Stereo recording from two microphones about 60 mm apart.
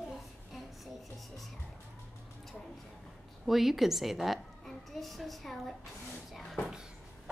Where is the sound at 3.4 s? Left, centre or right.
Centre.